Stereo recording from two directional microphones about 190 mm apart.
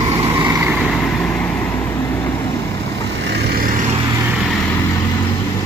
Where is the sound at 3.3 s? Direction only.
60° right (ahead or behind).